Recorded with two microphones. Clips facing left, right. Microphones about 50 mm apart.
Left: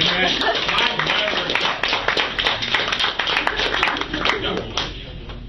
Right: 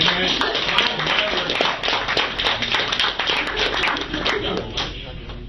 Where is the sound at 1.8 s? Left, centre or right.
Right.